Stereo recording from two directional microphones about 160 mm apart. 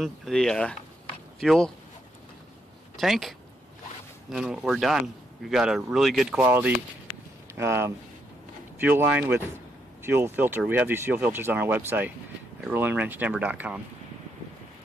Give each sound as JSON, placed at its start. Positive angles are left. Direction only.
{"t": 0.0, "sound": "speech", "side_deg": 5}
{"t": 3.0, "sound": "speech", "side_deg": 0}
{"t": 6.4, "sound": "speech", "side_deg": -10}